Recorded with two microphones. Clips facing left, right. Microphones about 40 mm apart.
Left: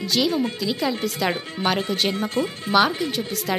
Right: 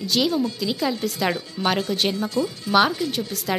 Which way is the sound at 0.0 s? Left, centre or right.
Centre.